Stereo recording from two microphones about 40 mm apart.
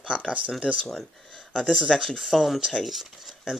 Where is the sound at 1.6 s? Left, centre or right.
Centre.